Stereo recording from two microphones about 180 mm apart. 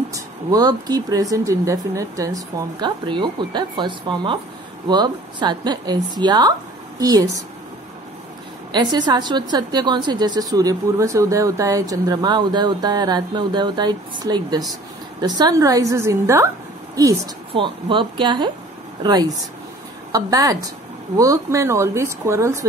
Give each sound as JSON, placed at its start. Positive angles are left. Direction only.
{"t": 0.1, "sound": "a woman's voice", "side_deg": -20}
{"t": 8.7, "sound": "a woman's voice", "side_deg": -25}